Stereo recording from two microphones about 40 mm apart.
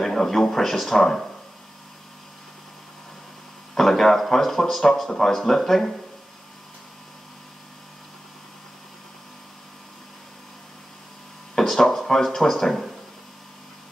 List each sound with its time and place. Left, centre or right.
0.0 s speech: centre
3.7 s speech: centre
11.5 s a sound: centre